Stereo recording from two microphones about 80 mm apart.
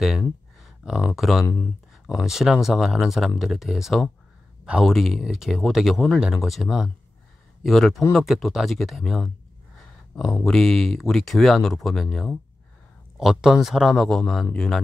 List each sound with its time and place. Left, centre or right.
0.6 s a sound: centre
1.4 s speech: left
2.0 s speech: centre
10.4 s speech: centre
13.2 s speech: centre